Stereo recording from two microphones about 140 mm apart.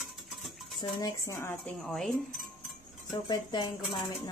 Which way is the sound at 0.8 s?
25° left (ahead or behind).